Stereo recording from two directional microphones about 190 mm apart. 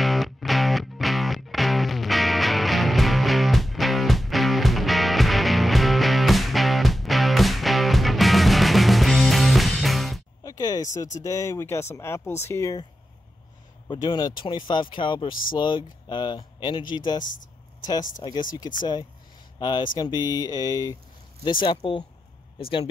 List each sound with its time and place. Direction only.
0.0 s music: centre (ahead or behind)
10.4 s a sound: 20° left (ahead or behind)
11.1 s speech: 15° left (ahead or behind)
13.8 s speech: 20° left (ahead or behind)
18.2 s speech: 25° left (ahead or behind)